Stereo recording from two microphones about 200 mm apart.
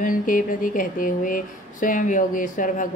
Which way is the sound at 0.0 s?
45° left (ahead or behind).